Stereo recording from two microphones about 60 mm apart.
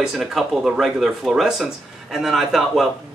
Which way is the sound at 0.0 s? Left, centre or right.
Centre.